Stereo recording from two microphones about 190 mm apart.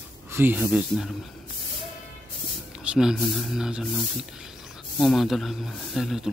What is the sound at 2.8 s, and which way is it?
Speech, 5° right (ahead or behind).